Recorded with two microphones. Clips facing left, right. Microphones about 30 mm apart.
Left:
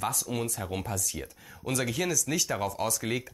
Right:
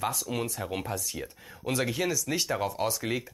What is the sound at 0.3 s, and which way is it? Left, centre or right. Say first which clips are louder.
Speech: right 1 dB; centre.